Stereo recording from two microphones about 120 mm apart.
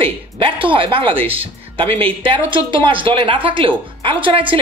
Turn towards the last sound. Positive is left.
turn(degrees=-45)  # may be behind; listen again after turning